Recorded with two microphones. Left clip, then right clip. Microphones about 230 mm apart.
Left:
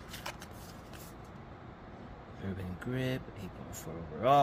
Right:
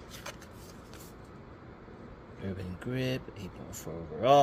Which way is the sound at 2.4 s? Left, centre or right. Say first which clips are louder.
Right 2 dB; centre.